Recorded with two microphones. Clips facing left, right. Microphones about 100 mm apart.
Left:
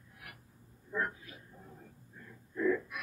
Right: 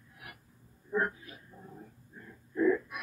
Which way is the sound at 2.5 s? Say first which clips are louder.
Right 4 dB; 20° right (ahead or behind).